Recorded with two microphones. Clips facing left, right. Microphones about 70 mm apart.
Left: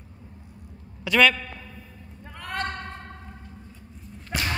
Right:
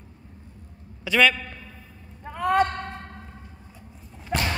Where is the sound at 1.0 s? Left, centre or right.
Centre.